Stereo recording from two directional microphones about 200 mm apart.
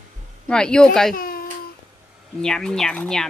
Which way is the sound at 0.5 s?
5° left (ahead or behind).